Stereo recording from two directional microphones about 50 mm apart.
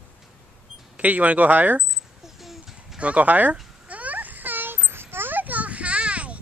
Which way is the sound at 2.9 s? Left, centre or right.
Right.